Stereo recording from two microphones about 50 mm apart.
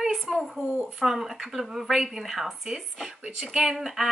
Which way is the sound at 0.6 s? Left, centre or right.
Right.